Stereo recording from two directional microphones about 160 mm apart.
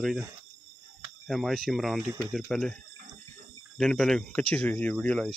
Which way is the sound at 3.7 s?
5° left (ahead or behind).